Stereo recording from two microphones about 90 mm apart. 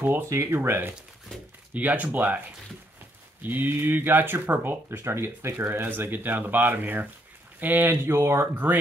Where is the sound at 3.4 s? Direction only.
25° right (ahead or behind).